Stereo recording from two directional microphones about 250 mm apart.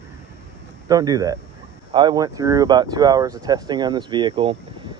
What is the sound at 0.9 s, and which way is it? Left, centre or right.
Speech, centre.